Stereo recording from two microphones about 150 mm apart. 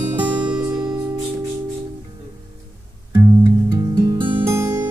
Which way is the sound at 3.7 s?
25° right (ahead or behind).